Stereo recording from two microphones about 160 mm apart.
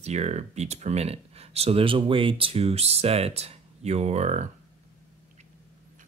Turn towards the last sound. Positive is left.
turn(degrees=-45)  # may be behind; listen again after turning